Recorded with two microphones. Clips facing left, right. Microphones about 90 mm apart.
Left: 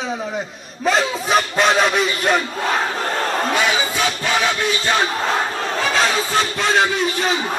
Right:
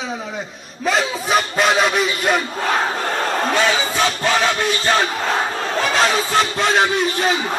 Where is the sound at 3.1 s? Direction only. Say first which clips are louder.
Even; centre (ahead or behind).